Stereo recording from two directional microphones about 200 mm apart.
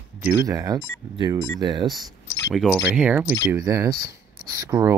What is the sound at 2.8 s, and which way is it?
Speech, 10° right (ahead or behind).